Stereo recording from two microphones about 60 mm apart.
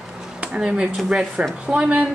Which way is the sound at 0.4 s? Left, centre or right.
Centre.